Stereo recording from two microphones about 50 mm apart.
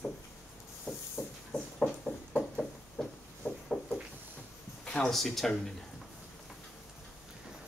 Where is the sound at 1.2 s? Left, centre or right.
Left.